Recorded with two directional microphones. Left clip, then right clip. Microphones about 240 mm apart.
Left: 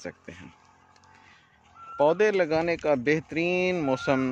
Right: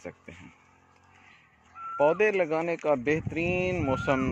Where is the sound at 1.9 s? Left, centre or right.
Centre.